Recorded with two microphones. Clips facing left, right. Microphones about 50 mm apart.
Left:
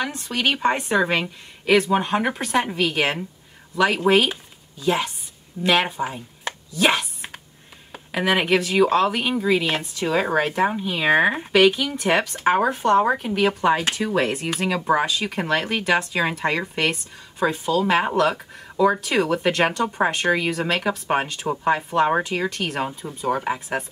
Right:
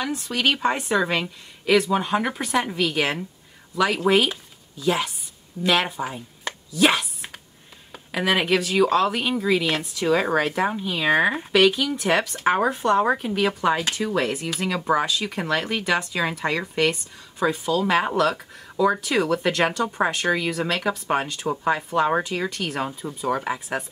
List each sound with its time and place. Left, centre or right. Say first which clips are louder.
0.3 s speech: left 1 dB; centre
6.0 s a sound: left 1 dB; centre
7.9 s speech: left 1 dB; centre